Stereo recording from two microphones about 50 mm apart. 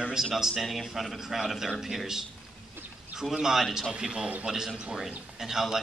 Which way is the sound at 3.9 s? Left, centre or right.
Centre.